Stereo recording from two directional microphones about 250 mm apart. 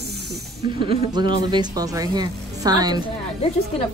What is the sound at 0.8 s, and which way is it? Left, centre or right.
Speech, centre.